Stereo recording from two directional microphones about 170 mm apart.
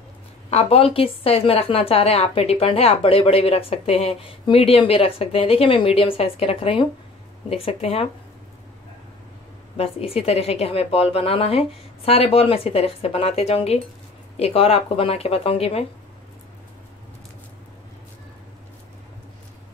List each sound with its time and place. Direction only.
0.5 s a woman's voice: 35° left (ahead or behind)
9.8 s a woman's voice: 35° left (ahead or behind)